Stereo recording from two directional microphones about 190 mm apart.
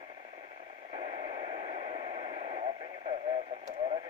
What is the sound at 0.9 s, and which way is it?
Radio, 20° right (ahead or behind).